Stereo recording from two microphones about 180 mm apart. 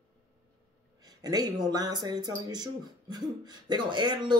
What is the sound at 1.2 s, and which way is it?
Speech, 20° right (ahead or behind).